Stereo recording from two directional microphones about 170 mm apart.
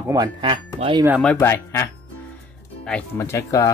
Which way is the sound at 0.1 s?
25° right (ahead or behind).